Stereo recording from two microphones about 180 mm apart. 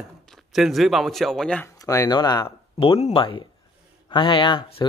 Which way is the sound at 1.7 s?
20° left (ahead or behind).